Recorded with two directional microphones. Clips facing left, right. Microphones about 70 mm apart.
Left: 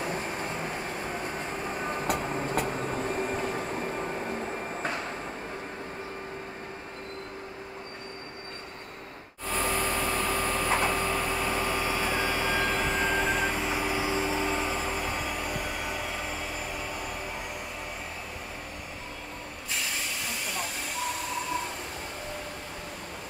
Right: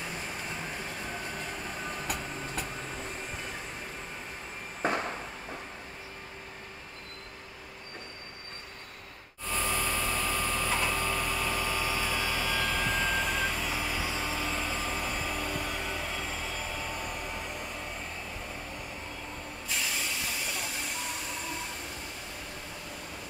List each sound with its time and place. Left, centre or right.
0.0 s train: left
9.5 s a sound: left
10.4 s vehicle: left; by 16.3 s centre